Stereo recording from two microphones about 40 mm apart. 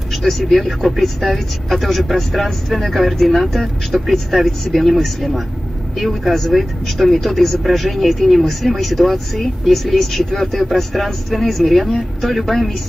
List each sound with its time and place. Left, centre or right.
0.1 s speech: centre